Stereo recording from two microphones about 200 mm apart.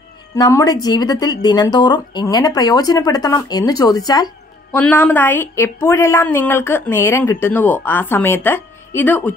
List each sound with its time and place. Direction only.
0.4 s speech: 15° left (ahead or behind)
4.7 s a woman's voice: 10° left (ahead or behind)